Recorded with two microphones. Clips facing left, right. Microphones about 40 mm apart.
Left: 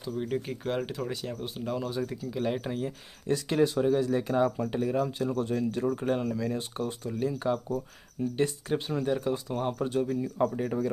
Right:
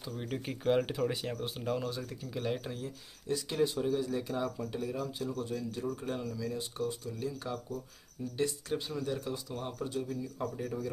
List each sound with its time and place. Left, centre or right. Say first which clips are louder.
0.1 s speech: left 7 dB; centre
1.9 s speech: left 7 dB; centre
3.3 s speech: left 6 dB; left